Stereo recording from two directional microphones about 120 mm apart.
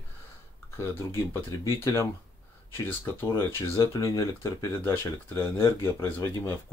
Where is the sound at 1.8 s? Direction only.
20° left (ahead or behind).